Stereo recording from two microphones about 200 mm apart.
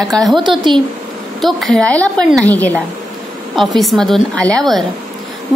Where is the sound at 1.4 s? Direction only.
Centre (ahead or behind).